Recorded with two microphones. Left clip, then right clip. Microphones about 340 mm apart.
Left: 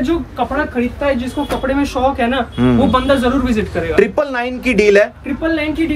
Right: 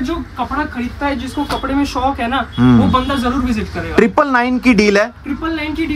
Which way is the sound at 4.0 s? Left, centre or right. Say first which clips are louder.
Right 3 dB; centre.